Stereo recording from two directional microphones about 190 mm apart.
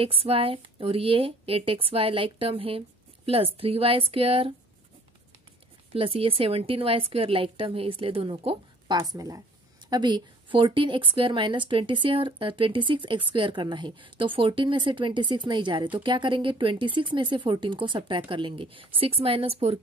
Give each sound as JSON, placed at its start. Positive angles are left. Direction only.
{"t": 0.0, "sound": "a woman's voice", "side_deg": -30}
{"t": 5.9, "sound": "a woman's voice", "side_deg": -30}